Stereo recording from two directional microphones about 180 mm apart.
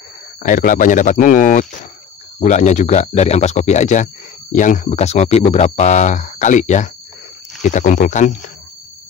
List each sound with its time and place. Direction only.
0.4 s speech: 45° left (ahead or behind)